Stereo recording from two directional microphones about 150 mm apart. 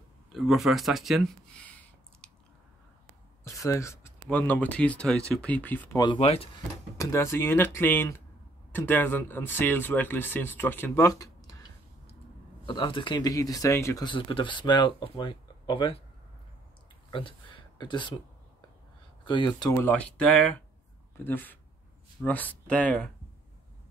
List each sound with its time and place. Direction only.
0.3 s speech: centre (ahead or behind)
1.6 s a sound: 10° left (ahead or behind)
3.4 s speech: 20° left (ahead or behind)
5.9 s speech: 35° left (ahead or behind)
7.0 s speech: 20° left (ahead or behind)
12.6 s speech: 35° left (ahead or behind)
14.0 s speech: 35° left (ahead or behind)
17.1 s speech: 35° left (ahead or behind)
19.2 s speech: 30° left (ahead or behind)
19.7 s speech: 10° left (ahead or behind)